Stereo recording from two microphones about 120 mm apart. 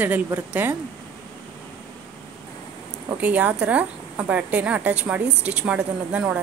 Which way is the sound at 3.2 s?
10° right (ahead or behind).